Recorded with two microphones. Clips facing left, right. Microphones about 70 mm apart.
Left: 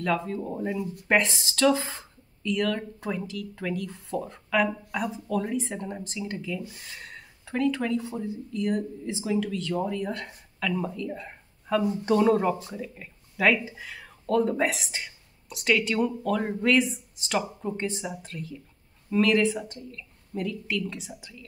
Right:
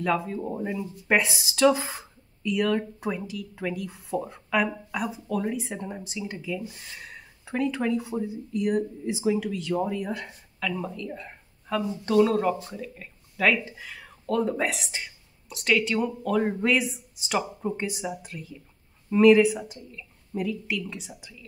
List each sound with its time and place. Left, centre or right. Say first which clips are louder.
0.0 s speech: right 1 dB; centre
7.4 s speech: even; centre